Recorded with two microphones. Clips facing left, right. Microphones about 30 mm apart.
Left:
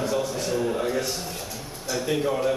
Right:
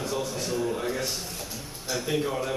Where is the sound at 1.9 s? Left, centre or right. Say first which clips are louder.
Left 3 dB; centre.